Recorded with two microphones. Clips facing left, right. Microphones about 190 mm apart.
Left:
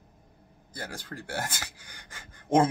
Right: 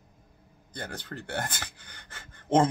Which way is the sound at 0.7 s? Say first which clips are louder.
Right 1 dB; 5° left (ahead or behind).